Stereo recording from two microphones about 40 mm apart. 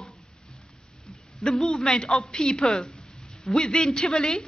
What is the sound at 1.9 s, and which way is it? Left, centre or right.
A man's voice, left.